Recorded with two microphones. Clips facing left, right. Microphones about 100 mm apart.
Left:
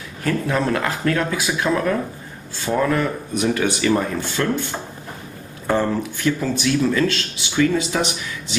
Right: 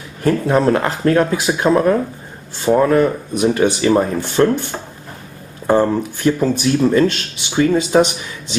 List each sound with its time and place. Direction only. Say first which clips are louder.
0.2 s speech: right 6 dB; 25° right (ahead or behind)
5.7 s speech: right 6 dB; 25° right (ahead or behind)
6.1 s speech: right 5 dB; 40° right (ahead or behind)
7.7 s speech: right 8 dB; 45° right (ahead or behind)